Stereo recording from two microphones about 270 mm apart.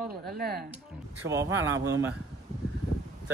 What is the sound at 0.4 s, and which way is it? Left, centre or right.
Speech, right.